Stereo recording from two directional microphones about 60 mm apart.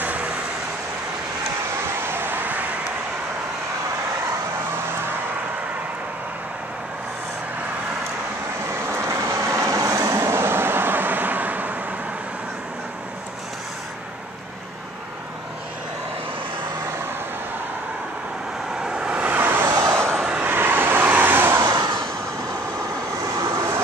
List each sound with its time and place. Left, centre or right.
0.0 s vehicle: right
2.0 s vehicle: right
8.6 s vehicle: right
10.1 s vehicle: right
18.8 s vehicle: centre
19.2 s vehicle: right
19.7 s vehicle: right
20.2 s vehicle: centre
20.4 s vehicle: right
23.3 s vehicle: right